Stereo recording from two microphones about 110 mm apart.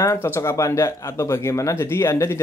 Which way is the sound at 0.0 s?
25° left (ahead or behind).